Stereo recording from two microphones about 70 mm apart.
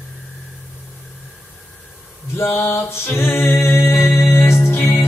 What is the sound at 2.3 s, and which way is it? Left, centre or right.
Music, left.